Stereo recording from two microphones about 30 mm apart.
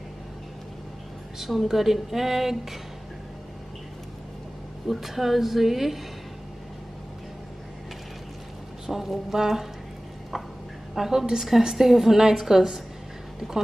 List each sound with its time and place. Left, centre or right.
1.4 s a woman's voice: centre
4.8 s a woman's voice: centre
8.8 s a woman's voice: centre
11.0 s a woman's voice: centre